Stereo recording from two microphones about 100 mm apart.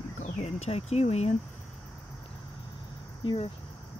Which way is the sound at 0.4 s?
90° left.